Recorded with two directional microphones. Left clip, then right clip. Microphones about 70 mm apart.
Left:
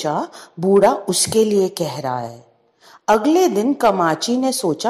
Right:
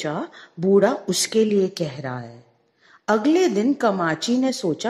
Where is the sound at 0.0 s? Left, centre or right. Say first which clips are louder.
Left 6 dB; centre.